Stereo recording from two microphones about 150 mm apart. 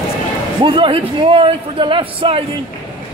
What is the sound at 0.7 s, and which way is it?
A man's voice, 35° right (ahead or behind).